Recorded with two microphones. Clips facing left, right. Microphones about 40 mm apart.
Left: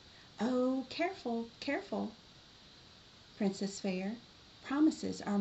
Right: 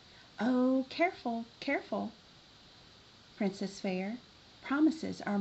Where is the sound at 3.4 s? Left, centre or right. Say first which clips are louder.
Right 1 dB; centre.